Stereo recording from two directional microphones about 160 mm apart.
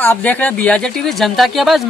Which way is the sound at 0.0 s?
10° left (ahead or behind).